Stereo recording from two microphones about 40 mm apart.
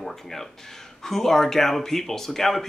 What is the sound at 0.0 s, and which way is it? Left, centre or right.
Speech, centre.